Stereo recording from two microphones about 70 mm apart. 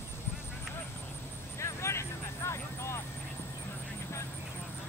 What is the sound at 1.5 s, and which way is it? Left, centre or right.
Vehicle, left.